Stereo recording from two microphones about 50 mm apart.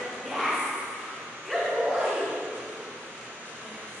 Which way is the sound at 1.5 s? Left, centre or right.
Centre.